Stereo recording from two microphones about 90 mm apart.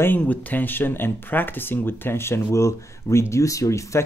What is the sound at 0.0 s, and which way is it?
Speech, 20° left (ahead or behind).